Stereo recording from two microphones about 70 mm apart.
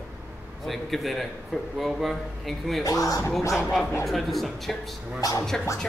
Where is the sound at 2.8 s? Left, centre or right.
Left.